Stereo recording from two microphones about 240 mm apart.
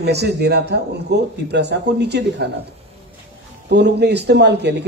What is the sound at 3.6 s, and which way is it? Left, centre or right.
A man's voice, right.